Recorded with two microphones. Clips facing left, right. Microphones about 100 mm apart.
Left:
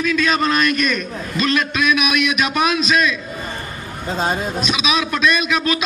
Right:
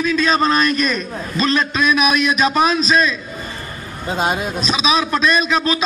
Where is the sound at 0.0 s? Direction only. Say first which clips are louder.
Right 2 dB; 35° right (ahead or behind).